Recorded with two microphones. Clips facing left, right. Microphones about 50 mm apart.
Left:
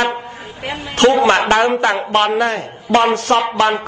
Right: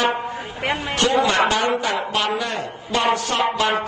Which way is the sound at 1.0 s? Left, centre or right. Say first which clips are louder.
Left 6 dB; left.